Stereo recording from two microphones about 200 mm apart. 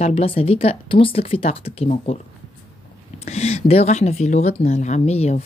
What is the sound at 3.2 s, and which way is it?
Speech, 35° left (ahead or behind).